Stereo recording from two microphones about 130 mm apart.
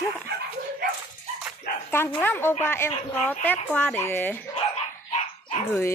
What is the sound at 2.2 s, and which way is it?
A woman's voice, 15° left (ahead or behind).